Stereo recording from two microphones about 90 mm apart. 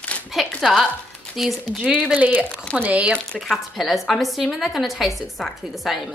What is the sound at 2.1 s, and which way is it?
Speech, 20° right (ahead or behind).